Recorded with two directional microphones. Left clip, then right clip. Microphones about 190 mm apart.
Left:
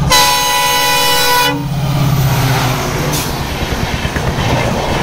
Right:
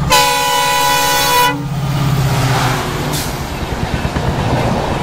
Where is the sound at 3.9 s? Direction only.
45° right (ahead or behind).